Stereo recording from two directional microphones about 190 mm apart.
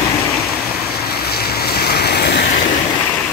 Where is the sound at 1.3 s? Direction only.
55° left (ahead or behind).